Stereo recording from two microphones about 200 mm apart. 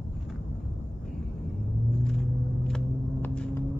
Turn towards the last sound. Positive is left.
turn(degrees=5)  # may be behind; listen again after turning